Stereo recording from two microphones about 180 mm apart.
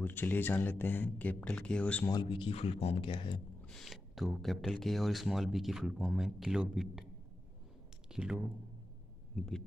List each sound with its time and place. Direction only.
0.0 s speech: 10° left (ahead or behind)
2.0 s speech: 25° left (ahead or behind)
3.6 s speech: centre (ahead or behind)
8.1 s speech: 5° right (ahead or behind)